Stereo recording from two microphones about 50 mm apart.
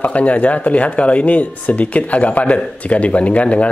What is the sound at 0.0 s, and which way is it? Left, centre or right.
Speech, left.